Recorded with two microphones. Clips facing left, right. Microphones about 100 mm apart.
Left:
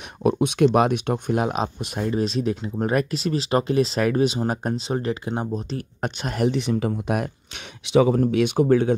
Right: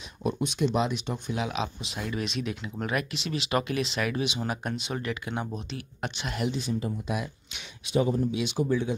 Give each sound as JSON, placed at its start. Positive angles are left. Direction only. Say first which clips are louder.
{"t": 0.2, "sound": "speech", "louder": "left 9 dB", "side_deg": 60}
{"t": 6.5, "sound": "speech", "louder": "left 7 dB", "side_deg": 75}
{"t": 7.9, "sound": "speech", "louder": "left 8 dB", "side_deg": 90}
{"t": 8.4, "sound": "speech", "louder": "left 9 dB", "side_deg": 55}